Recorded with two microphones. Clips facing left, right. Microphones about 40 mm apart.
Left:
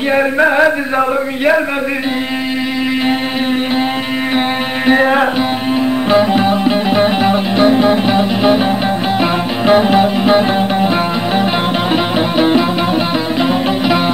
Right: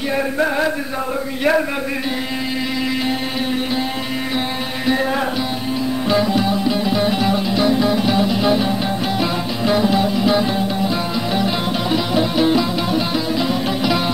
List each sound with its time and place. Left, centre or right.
0.1 s chant: left
4.8 s chant: left
6.0 s music: left
11.9 s music: left